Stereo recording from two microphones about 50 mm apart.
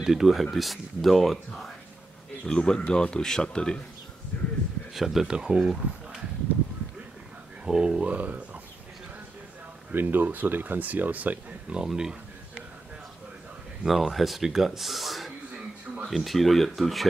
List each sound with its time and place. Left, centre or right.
0.0 s speech: centre
2.4 s speech: centre
4.3 s a sound: left
4.9 s speech: centre
5.3 s speech: centre
5.6 s speech: centre
7.6 s speech: centre
9.9 s speech: right
11.7 s speech: centre
13.8 s speech: centre